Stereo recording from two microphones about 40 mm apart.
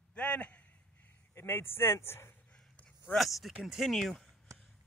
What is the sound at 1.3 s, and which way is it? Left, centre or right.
Speech, left.